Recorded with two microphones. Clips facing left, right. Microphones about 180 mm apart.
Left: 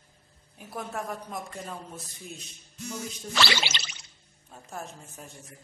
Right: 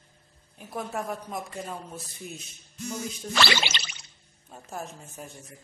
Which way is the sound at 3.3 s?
55° right (ahead or behind).